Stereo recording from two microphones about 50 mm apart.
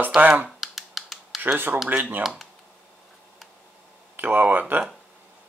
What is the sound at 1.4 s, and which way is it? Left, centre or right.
Speech, right.